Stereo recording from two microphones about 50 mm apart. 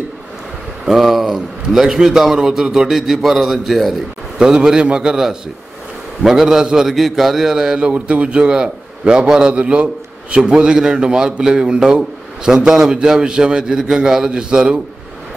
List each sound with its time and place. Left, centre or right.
0.8 s a man's voice: centre
4.4 s a man's voice: centre
7.9 s a man's voice: right